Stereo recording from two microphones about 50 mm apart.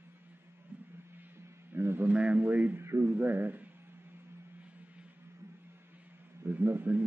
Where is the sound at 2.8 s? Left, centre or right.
Right.